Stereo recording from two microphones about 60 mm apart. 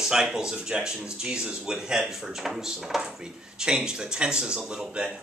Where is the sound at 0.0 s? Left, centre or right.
Centre.